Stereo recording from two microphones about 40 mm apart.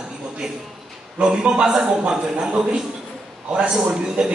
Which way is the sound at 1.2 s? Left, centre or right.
Right.